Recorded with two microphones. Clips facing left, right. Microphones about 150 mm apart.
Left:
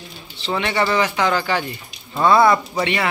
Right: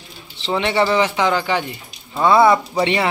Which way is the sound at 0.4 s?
25° right (ahead or behind).